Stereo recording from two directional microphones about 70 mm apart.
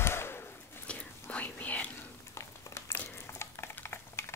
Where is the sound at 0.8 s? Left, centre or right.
Left.